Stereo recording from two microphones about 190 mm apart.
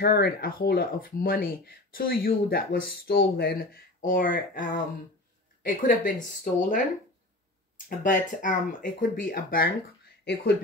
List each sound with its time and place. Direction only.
0.0 s speech: 55° left (ahead or behind)
10.2 s speech: 60° left (ahead or behind)